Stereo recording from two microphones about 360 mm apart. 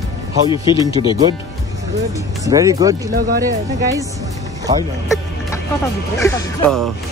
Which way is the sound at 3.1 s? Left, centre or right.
Right.